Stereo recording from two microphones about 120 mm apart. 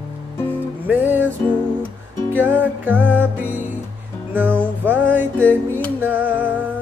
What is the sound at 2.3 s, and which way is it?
Music, 15° right (ahead or behind).